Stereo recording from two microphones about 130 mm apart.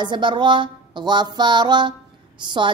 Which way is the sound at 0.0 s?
35° right (ahead or behind).